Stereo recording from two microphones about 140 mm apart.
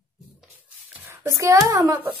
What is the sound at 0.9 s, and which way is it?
A child's voice, 15° right (ahead or behind).